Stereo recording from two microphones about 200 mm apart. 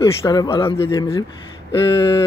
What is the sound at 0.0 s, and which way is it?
Speech, 15° left (ahead or behind).